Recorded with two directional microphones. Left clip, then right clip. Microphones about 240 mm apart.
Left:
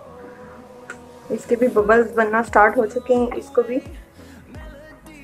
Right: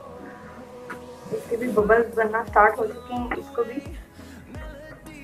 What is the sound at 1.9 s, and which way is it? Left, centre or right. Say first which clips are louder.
Speech: left 2 dB; left.